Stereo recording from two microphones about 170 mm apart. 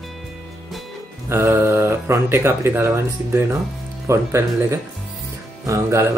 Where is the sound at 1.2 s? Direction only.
15° right (ahead or behind).